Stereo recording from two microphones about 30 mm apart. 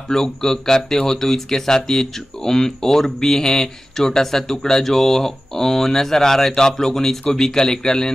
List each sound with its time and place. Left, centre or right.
0.1 s speech: centre